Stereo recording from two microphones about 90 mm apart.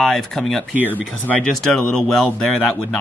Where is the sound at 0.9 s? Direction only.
15° left (ahead or behind).